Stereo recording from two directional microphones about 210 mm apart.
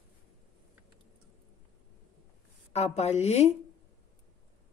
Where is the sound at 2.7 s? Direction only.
30° left (ahead or behind).